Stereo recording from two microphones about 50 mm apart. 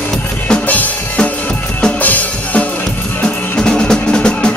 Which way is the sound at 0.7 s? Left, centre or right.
Left.